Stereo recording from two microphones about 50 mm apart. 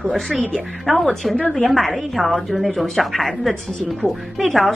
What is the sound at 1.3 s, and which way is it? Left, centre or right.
Speech, left.